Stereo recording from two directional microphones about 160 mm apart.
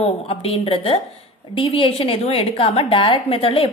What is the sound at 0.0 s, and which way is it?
A woman's voice, 40° left (ahead or behind).